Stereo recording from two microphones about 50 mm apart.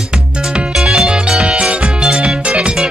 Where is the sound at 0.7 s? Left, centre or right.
Centre.